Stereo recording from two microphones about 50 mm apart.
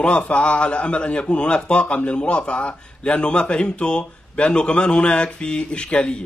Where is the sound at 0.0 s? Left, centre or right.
Left.